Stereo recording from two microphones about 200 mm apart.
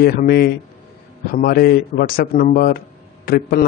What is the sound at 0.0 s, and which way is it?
Speech, 50° left (ahead or behind).